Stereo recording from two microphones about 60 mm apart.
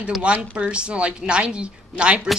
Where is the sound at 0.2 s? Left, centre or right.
Centre.